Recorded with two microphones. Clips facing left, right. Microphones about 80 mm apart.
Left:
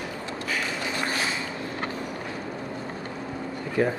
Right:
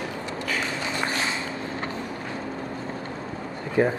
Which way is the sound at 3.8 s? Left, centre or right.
Right.